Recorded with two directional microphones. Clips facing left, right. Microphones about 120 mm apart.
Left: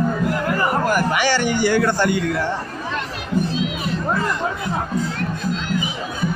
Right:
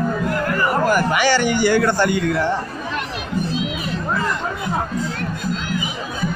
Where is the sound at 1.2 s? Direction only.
90° right.